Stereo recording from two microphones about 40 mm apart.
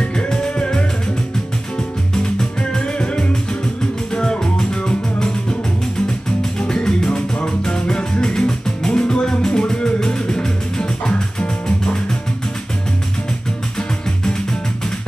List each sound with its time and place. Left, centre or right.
0.0 s music: left
4.1 s music: centre
6.7 s music: left